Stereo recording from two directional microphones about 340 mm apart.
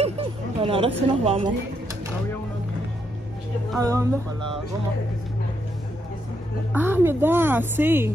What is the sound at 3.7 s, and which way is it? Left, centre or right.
Speech, centre.